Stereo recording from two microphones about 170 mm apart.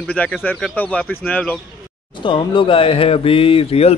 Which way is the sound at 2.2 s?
30° left (ahead or behind).